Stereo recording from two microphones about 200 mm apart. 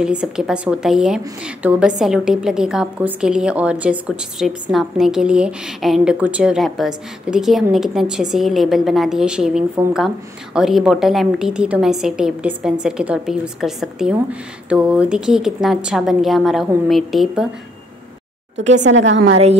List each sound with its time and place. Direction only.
0.0 s a woman's voice: 5° right (ahead or behind)
18.6 s speech: 35° right (ahead or behind)
18.9 s a woman's voice: 70° right (ahead or behind)